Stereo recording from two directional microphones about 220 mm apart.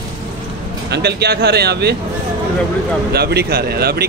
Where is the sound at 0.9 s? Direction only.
50° right (ahead or behind).